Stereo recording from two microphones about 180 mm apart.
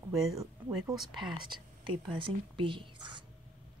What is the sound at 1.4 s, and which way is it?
Speech, 25° right (ahead or behind).